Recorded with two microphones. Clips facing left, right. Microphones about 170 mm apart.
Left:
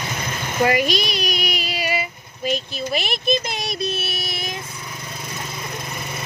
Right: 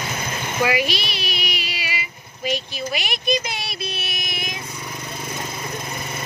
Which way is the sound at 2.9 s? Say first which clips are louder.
Left 4 dB; 35° left (ahead or behind).